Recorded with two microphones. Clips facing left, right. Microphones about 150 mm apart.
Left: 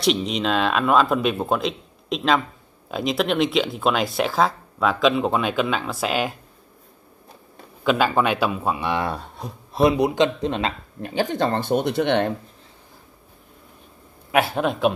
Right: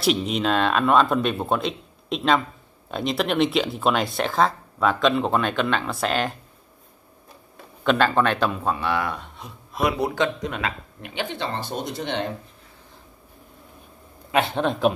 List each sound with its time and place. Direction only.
0.0 s speech: centre (ahead or behind)
7.8 s speech: 5° left (ahead or behind)
9.1 s speech: 35° left (ahead or behind)
9.9 s speech: 20° left (ahead or behind); by 12.3 s 60° left (ahead or behind)
14.3 s speech: 5° left (ahead or behind)